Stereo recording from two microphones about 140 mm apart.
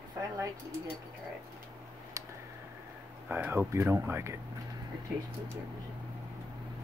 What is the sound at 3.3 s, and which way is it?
Speech, 15° right (ahead or behind).